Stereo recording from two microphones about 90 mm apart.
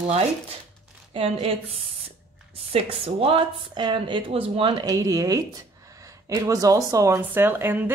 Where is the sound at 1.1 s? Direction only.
90° right.